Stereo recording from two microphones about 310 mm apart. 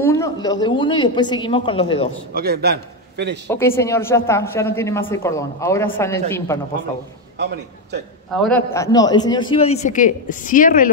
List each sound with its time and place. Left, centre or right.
0.0 s a man's voice: centre
2.3 s a man's voice: right
3.4 s a man's voice: centre
8.3 s a man's voice: centre; by 10.9 s left